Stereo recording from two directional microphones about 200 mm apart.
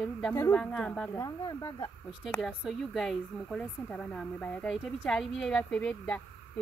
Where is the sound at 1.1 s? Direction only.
15° left (ahead or behind).